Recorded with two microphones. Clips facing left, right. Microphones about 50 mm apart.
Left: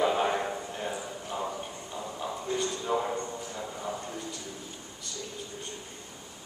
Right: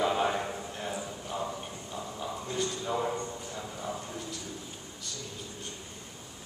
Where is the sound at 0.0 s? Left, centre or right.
Centre.